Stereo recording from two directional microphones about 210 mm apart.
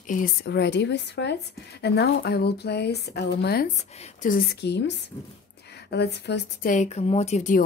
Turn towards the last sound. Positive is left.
turn(degrees=35)  # may be behind; listen again after turning